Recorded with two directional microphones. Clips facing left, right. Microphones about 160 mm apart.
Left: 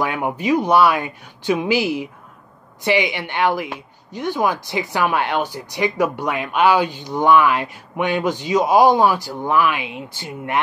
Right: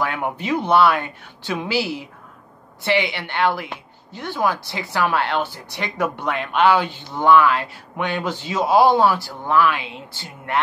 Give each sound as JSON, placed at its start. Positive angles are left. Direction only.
{"t": 0.0, "sound": "a woman's voice", "side_deg": 15}